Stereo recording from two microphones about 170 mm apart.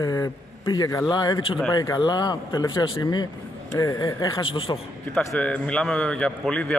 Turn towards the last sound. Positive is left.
turn(degrees=0)  # may be behind; listen again after turning